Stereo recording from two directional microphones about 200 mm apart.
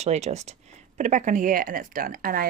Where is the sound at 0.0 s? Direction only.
35° right (ahead or behind).